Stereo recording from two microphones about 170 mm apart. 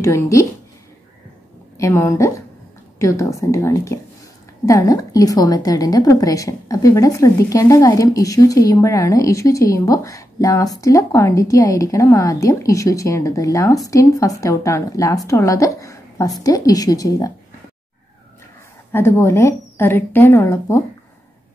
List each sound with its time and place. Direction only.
0.0 s a woman's voice: 15° left (ahead or behind)
1.8 s a woman's voice: 15° left (ahead or behind)
18.9 s a woman's voice: 15° left (ahead or behind)